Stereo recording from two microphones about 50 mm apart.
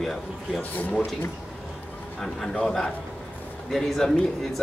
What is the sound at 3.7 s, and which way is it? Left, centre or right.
Speech, centre.